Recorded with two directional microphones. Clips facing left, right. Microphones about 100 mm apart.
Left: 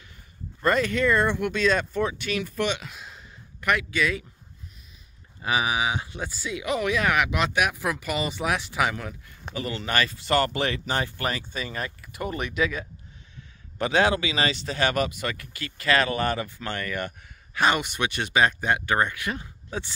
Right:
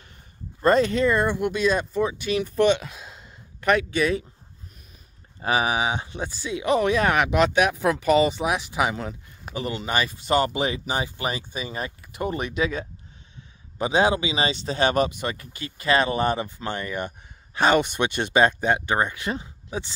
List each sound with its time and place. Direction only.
0.6 s speech: 30° right (ahead or behind)
2.3 s speech: 30° right (ahead or behind)
3.2 s a sound: 25° right (ahead or behind)
5.4 s speech: 35° right (ahead or behind)
19.7 s speech: 10° right (ahead or behind)